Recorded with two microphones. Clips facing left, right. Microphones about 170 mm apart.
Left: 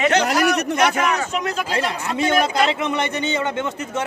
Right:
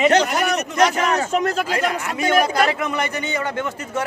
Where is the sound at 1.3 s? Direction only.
50° right (ahead or behind).